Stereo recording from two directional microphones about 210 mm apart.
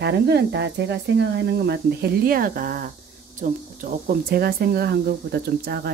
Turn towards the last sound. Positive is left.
turn(degrees=-50)  # may be behind; listen again after turning